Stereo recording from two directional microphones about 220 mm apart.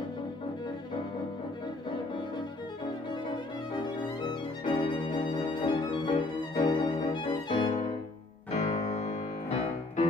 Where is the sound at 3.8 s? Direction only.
20° left (ahead or behind).